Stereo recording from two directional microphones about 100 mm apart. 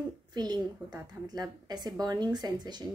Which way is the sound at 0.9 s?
10° right (ahead or behind).